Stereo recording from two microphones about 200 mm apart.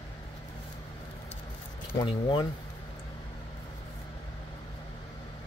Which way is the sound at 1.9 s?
25° left (ahead or behind).